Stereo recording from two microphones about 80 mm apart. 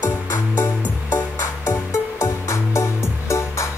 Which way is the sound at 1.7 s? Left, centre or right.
Left.